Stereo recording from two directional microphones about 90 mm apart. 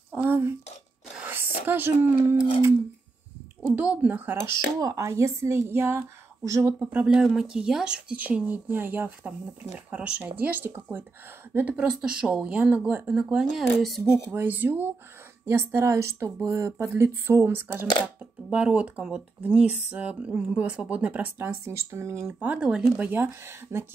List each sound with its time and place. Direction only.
0.1 s speech: 25° right (ahead or behind)
3.7 s a woman's voice: 15° right (ahead or behind)
4.4 s speech: 40° right (ahead or behind)
6.8 s a woman's voice: 15° right (ahead or behind)
13.2 s speech: 5° right (ahead or behind)
14.3 s a woman's voice: 20° right (ahead or behind)
21.6 s speech: 30° right (ahead or behind)
22.4 s a woman's voice: 15° right (ahead or behind)